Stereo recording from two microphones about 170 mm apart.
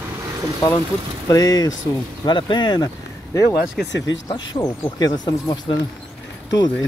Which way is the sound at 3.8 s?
90° left.